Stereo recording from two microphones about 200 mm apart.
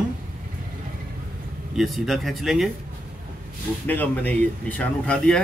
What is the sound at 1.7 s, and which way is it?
Speech, centre (ahead or behind).